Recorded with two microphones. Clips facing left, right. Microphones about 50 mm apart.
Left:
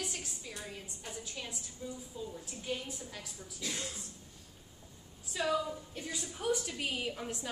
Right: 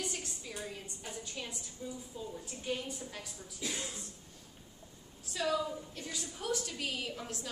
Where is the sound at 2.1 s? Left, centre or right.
Centre.